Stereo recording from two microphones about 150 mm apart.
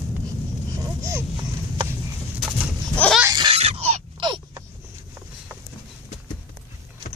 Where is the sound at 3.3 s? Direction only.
30° right (ahead or behind).